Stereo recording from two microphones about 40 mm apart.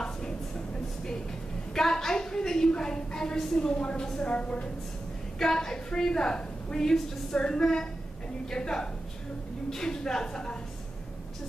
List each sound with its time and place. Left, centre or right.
1.8 s a woman's voice: centre; by 4.6 s left
5.4 s a woman's voice: centre